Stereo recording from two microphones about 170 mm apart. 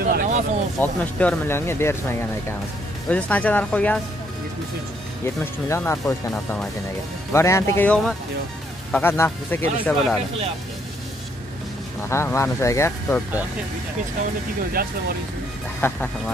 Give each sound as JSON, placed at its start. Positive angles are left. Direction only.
{"t": 0.0, "sound": "a sound", "side_deg": -60}
{"t": 0.7, "sound": "speech", "side_deg": 10}
{"t": 5.2, "sound": "speech", "side_deg": 15}
{"t": 8.9, "sound": "speech", "side_deg": 15}
{"t": 12.1, "sound": "speech", "side_deg": 15}
{"t": 14.8, "sound": "speech", "side_deg": -60}
{"t": 15.8, "sound": "speech", "side_deg": 15}